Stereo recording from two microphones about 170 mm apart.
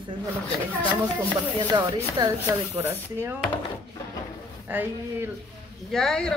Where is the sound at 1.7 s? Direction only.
25° right (ahead or behind).